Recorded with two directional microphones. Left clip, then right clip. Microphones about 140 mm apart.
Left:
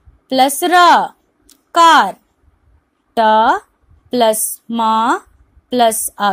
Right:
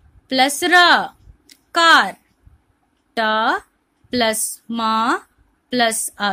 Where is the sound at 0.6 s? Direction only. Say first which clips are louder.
Left 3 dB; 10° left (ahead or behind).